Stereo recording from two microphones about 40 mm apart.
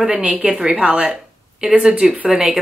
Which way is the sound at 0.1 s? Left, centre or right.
Right.